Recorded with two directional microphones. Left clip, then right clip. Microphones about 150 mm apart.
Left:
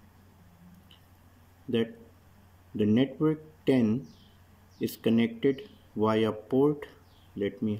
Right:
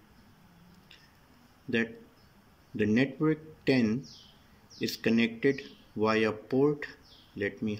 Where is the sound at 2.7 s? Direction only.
20° left (ahead or behind).